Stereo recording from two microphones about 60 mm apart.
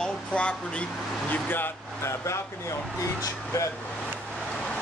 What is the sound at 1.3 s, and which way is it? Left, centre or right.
Speech, left.